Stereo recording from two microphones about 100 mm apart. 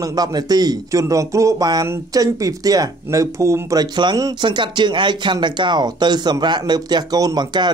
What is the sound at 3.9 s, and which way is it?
Speech, 50° right (ahead or behind).